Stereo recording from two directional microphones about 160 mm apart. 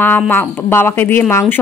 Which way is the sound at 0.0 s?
10° left (ahead or behind).